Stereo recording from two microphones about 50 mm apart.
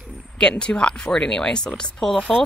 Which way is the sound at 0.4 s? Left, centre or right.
Centre.